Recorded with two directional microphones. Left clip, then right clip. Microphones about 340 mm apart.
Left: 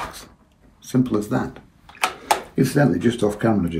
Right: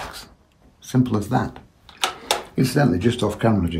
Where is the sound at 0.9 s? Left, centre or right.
Right.